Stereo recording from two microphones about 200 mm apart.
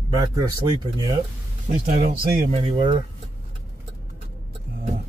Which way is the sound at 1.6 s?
35° right (ahead or behind).